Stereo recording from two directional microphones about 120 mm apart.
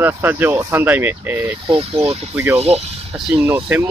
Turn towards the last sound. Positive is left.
turn(degrees=-15)  # may be behind; listen again after turning